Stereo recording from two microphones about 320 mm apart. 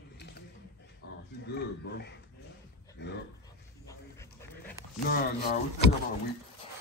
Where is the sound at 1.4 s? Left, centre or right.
Left.